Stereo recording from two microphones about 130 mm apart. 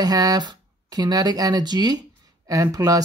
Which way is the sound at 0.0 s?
30° right (ahead or behind).